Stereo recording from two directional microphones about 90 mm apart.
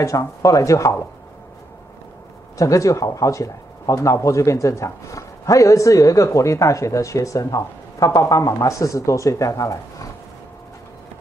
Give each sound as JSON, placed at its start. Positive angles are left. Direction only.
{"t": 0.0, "sound": "speech", "side_deg": 35}
{"t": 2.5, "sound": "speech", "side_deg": 35}